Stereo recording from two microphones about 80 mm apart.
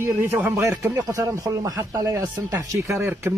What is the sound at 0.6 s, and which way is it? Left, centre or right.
A man's voice, right.